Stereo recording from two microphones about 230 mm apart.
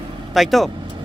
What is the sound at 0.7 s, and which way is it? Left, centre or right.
Vehicle, centre.